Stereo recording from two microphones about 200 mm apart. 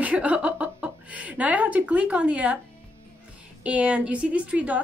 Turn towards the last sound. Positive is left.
turn(degrees=-5)  # may be behind; listen again after turning